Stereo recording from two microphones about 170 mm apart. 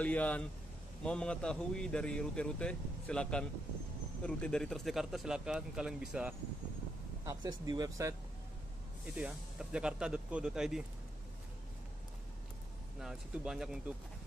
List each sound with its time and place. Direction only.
0.0 s a man's voice: 10° left (ahead or behind)
7.2 s speech: 20° right (ahead or behind)
9.1 s speech: 5° right (ahead or behind)
13.0 s speech: 5° right (ahead or behind)